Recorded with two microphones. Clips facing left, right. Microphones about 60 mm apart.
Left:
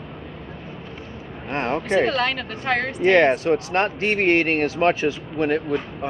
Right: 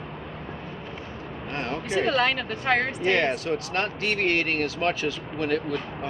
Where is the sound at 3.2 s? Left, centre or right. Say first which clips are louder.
Left 7 dB; left.